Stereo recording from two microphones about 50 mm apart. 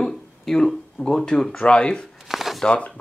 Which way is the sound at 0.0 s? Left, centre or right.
Centre.